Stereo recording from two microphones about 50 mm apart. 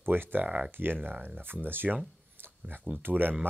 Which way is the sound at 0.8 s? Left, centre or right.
Right.